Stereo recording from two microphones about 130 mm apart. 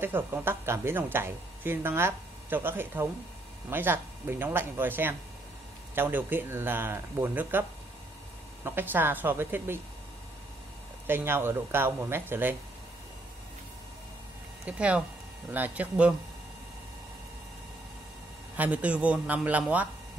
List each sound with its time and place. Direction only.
0.0 s a woman's voice: 15° right (ahead or behind)
8.6 s a woman's voice: 15° right (ahead or behind)
11.1 s a woman's voice: 15° right (ahead or behind)
14.7 s a woman's voice: 10° right (ahead or behind)
18.6 s a woman's voice: 10° right (ahead or behind)